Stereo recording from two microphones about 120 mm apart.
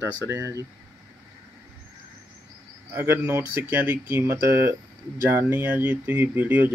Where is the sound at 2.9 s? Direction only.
20° right (ahead or behind).